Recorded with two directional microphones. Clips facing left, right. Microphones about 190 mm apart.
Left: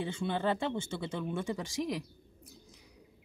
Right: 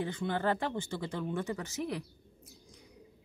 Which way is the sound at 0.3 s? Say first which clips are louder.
Left 1 dB; 20° left (ahead or behind).